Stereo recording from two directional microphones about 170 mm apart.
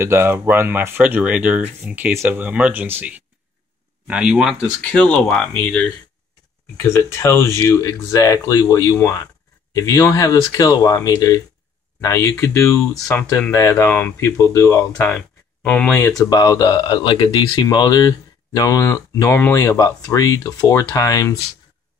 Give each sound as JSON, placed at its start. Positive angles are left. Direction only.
{"t": 0.0, "sound": "speech", "side_deg": -15}
{"t": 4.9, "sound": "speech", "side_deg": 5}
{"t": 15.0, "sound": "speech", "side_deg": 5}
{"t": 16.1, "sound": "speech", "side_deg": 20}